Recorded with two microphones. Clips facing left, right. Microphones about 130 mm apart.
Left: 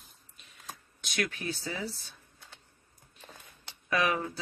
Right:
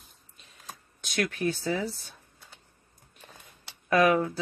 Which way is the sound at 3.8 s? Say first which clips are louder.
Right 7 dB; 50° right (ahead or behind).